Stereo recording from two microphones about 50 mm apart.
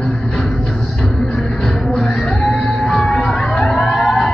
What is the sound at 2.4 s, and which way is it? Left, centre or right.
Music, centre.